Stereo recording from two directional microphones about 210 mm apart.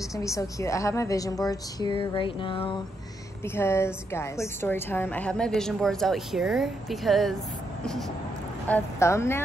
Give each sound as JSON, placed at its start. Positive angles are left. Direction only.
{"t": 0.1, "sound": "a woman's voice", "side_deg": 15}
{"t": 3.4, "sound": "a woman's voice", "side_deg": 10}
{"t": 8.6, "sound": "a woman's voice", "side_deg": 10}